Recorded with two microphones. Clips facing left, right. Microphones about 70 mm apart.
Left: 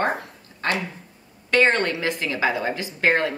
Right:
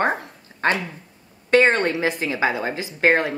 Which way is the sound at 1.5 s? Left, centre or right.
Right.